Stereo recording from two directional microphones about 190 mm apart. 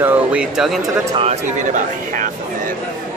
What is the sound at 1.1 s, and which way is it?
Speech, 35° right (ahead or behind).